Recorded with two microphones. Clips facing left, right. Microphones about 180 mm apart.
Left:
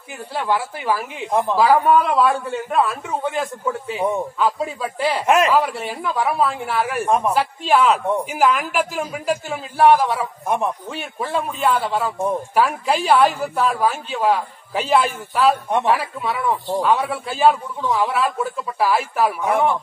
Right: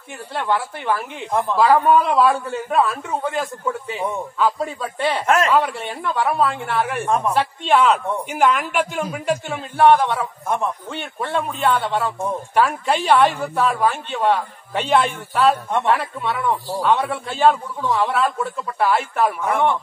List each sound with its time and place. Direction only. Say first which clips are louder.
0.3 s a man's voice: even; 5° left (ahead or behind)
5.2 s speech: left 2 dB; 15° left (ahead or behind)
5.5 s a man's voice: even; centre (ahead or behind)